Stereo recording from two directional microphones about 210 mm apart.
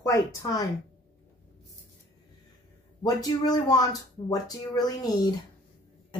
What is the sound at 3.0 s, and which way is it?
Speech, 15° left (ahead or behind).